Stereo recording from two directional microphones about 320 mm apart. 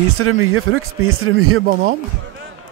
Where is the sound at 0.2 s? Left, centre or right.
Right.